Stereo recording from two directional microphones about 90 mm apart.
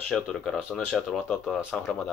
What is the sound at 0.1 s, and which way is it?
Speech, 5° left (ahead or behind).